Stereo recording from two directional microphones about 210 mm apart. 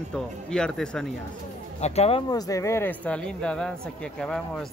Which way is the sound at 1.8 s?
30° left (ahead or behind).